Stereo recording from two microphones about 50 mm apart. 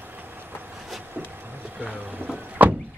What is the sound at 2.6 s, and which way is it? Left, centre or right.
Vehicle, right.